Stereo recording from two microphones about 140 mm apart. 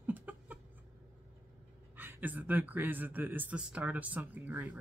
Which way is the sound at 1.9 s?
15° right (ahead or behind).